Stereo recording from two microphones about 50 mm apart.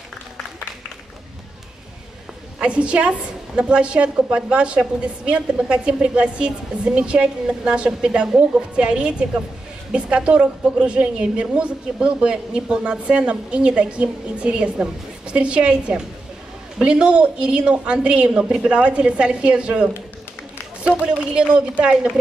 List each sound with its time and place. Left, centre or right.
2.6 s a woman's voice: right